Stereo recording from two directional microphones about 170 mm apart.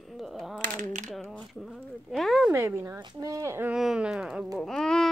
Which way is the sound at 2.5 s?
15° right (ahead or behind).